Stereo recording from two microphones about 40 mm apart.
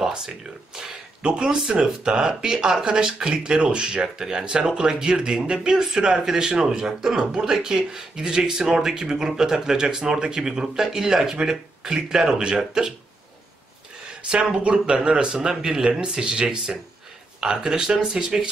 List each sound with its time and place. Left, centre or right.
0.0 s speech: centre
14.3 s speech: right